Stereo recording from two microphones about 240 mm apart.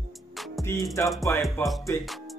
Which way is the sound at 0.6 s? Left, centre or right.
Centre.